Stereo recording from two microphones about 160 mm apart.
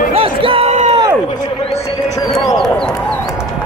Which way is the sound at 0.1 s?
35° right (ahead or behind).